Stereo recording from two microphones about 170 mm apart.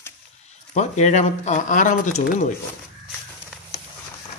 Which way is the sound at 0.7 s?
45° left (ahead or behind).